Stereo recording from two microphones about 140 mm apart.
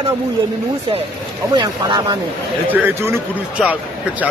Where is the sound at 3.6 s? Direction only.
Centre (ahead or behind).